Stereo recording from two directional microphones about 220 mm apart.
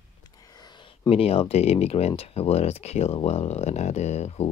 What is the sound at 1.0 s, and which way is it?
Speech, 25° left (ahead or behind).